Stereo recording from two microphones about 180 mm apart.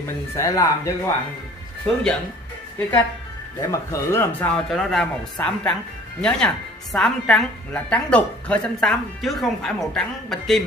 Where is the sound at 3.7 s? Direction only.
15° left (ahead or behind).